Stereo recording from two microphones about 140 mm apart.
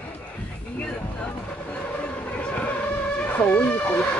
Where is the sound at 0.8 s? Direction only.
10° left (ahead or behind).